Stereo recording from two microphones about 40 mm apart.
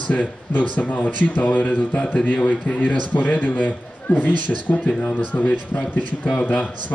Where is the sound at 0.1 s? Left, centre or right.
Left.